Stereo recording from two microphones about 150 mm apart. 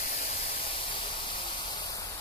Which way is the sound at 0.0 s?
65° left (ahead or behind).